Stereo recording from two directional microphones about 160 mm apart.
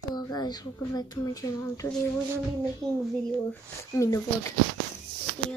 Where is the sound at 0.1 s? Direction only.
25° left (ahead or behind).